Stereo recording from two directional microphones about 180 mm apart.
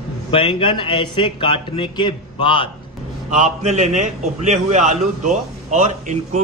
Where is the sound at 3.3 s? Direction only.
40° right (ahead or behind).